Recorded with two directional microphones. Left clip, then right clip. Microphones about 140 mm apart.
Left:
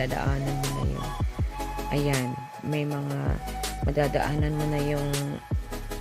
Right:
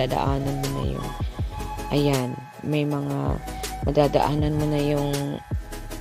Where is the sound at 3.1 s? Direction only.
15° right (ahead or behind).